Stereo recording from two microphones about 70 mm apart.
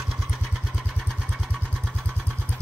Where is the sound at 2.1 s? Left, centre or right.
Left.